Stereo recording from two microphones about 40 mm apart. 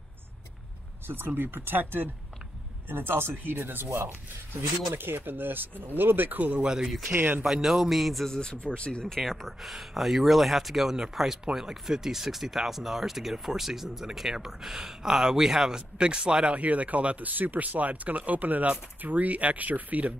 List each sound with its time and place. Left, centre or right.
1.0 s speech: right
2.9 s speech: right
6.6 s speech: centre
7.1 s speech: right
7.6 s speech: centre
7.9 s speech: centre
8.3 s speech: left
9.1 s speech: centre; by 16.5 s right
16.5 s speech: right
17.3 s speech: right